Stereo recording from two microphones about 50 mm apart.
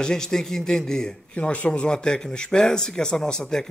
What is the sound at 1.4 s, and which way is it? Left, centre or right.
Speech, left.